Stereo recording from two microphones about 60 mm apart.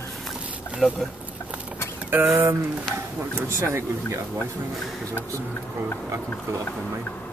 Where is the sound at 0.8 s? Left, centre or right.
Centre.